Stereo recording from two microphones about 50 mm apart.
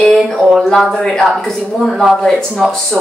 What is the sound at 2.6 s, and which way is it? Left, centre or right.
Speech, centre.